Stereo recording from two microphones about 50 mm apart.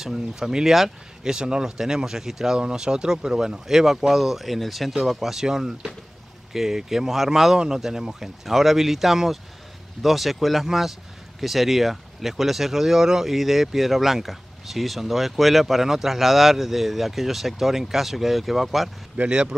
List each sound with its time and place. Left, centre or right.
0.0 s speech: centre
19.1 s speech: right